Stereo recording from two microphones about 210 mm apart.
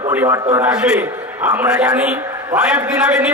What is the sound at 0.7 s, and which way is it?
A man's voice, 5° right (ahead or behind).